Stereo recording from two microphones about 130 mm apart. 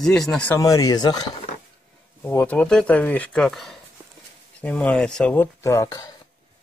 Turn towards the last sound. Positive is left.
turn(degrees=25)  # may be behind; listen again after turning